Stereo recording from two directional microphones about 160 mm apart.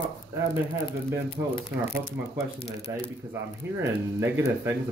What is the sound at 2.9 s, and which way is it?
Speech, 20° right (ahead or behind).